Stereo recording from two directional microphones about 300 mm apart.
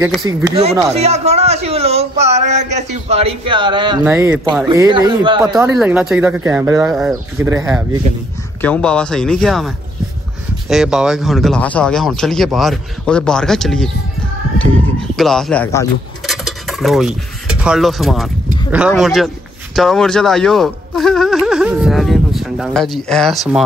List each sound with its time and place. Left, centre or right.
0.0 s a man's voice: centre
4.0 s a man's voice: centre
5.5 s speech: centre
8.5 s speech: centre
15.1 s speech: centre
16.3 s dishes: centre
18.7 s speech: centre